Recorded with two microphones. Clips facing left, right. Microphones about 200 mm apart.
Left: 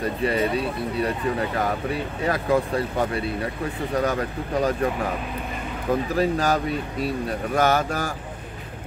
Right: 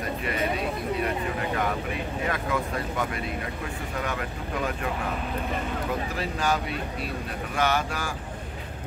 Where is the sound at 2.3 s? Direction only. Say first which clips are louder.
Left 9 dB; 35° left (ahead or behind).